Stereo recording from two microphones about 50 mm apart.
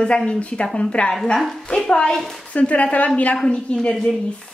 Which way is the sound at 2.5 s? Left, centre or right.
Left.